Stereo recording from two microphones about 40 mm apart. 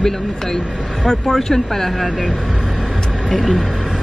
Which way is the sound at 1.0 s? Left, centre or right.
Centre.